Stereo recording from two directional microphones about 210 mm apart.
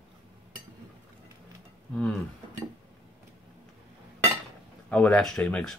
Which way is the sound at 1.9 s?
5° left (ahead or behind).